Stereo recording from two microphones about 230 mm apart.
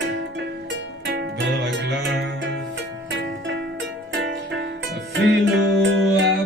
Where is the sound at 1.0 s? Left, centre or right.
Right.